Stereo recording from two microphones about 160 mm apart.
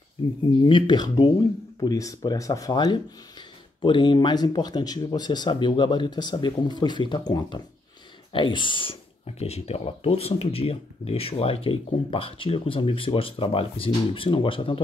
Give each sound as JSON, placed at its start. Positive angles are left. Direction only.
{"t": 0.6, "sound": "speech", "side_deg": 30}